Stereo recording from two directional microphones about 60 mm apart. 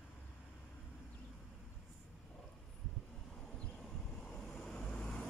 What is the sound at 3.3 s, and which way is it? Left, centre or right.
Vehicle, centre.